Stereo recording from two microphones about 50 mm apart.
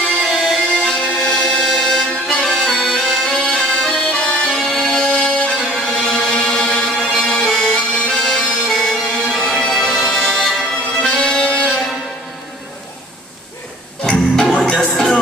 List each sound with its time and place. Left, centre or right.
0.2 s music: centre
0.8 s music: centre
4.5 s music: centre
14.0 s music: centre